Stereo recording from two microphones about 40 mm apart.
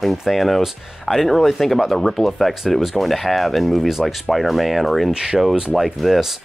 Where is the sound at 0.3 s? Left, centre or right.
Centre.